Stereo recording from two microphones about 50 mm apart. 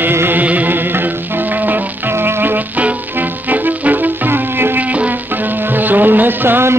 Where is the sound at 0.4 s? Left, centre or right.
Right.